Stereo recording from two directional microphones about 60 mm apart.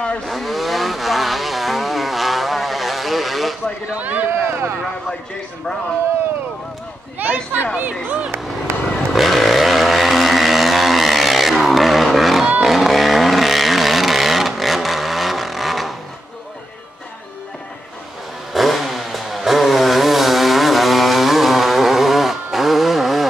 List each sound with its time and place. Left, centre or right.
0.3 s vehicle: centre
3.9 s speech: right
4.3 s speech: right
7.2 s speech: right
9.1 s vehicle: centre
12.6 s chainsaw: centre
18.5 s vehicle: centre